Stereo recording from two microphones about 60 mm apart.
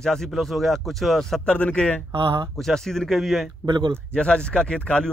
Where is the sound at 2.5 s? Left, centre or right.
Centre.